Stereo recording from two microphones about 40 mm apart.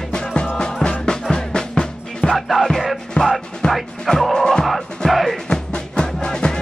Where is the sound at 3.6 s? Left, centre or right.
Left.